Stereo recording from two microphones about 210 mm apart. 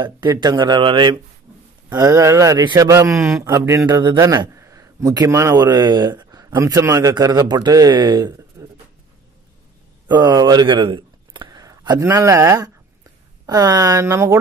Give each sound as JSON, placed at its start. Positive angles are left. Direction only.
{"t": 0.0, "sound": "a man's voice", "side_deg": -20}
{"t": 10.0, "sound": "speech", "side_deg": -20}